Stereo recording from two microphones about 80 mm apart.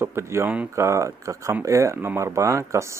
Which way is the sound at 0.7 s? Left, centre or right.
Right.